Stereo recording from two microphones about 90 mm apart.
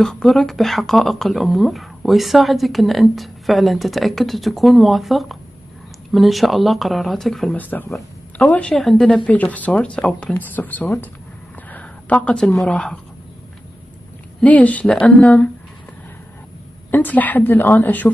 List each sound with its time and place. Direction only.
0.0 s speech: 5° left (ahead or behind)
7.5 s a woman's voice: 20° left (ahead or behind)
14.4 s speech: 15° left (ahead or behind)
16.9 s a woman's voice: 20° left (ahead or behind)